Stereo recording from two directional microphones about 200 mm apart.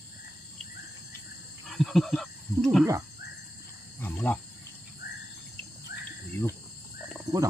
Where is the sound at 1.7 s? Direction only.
Centre (ahead or behind).